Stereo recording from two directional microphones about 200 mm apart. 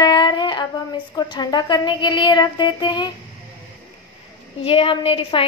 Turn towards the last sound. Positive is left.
turn(degrees=25)  # may be behind; listen again after turning